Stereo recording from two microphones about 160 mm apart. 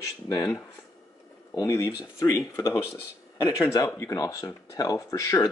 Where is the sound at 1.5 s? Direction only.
20° left (ahead or behind).